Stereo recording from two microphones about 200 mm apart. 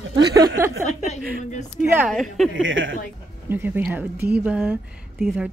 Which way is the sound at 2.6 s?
70° right (ahead or behind).